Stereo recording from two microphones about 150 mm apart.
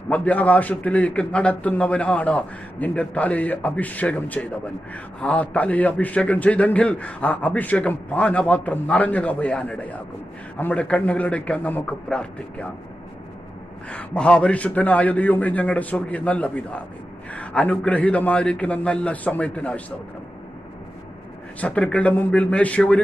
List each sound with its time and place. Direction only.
0.1 s a man's voice: 10° left (ahead or behind)
13.8 s a man's voice: 5° left (ahead or behind)
21.5 s a man's voice: 10° left (ahead or behind)